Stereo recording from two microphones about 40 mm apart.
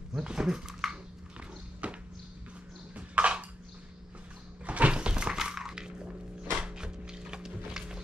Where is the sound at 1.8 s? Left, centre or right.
Right.